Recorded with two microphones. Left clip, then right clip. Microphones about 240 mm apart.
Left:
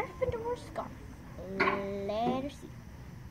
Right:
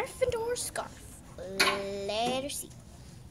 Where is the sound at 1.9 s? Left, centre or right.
Centre.